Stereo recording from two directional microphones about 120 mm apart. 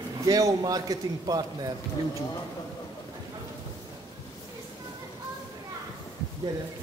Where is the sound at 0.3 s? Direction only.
30° right (ahead or behind).